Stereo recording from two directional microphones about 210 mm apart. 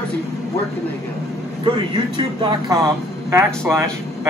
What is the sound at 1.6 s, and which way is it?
Speech, 25° right (ahead or behind).